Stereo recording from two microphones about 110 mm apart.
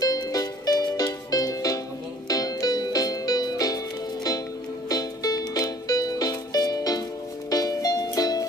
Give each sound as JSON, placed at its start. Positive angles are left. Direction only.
{"t": 0.0, "sound": "music", "side_deg": 35}